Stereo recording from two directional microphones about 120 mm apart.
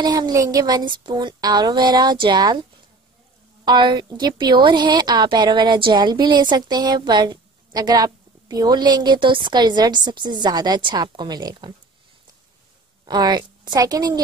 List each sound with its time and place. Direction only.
0.0 s a woman's voice: 35° right (ahead or behind)
3.6 s a woman's voice: 40° right (ahead or behind)
13.0 s a woman's voice: 40° right (ahead or behind)